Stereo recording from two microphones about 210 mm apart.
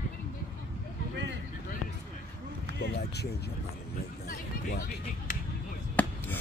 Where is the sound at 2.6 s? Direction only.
50° left (ahead or behind).